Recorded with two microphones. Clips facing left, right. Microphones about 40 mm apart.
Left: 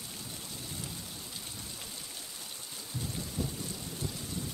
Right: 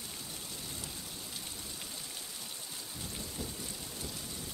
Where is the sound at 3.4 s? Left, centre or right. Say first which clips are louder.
Left 7 dB; centre.